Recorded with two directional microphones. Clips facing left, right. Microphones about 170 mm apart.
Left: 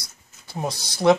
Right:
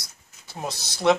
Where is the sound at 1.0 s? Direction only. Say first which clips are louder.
Left 3 dB; centre (ahead or behind).